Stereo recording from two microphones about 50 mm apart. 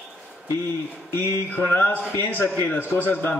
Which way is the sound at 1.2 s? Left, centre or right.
Left.